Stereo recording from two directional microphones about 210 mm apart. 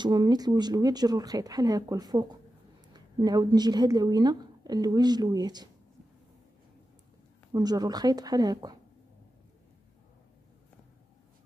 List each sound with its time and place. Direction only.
0.0 s speech: 20° right (ahead or behind)
7.5 s speech: 20° right (ahead or behind)